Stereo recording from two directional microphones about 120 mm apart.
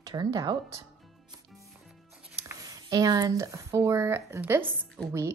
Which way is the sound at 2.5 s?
30° right (ahead or behind).